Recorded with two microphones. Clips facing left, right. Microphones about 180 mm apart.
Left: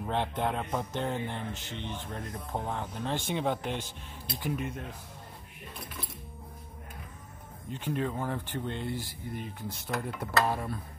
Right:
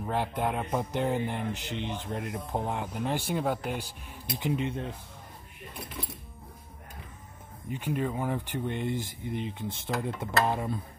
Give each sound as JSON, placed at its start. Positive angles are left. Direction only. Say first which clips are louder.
{"t": 0.0, "sound": "music", "louder": "right 1 dB", "side_deg": -5}
{"t": 4.4, "sound": "speech", "louder": "right 4 dB", "side_deg": -25}
{"t": 7.7, "sound": "music", "louder": "right 1 dB", "side_deg": -10}